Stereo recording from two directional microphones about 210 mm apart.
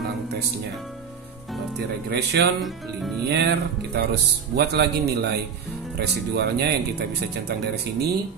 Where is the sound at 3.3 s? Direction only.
55° right (ahead or behind).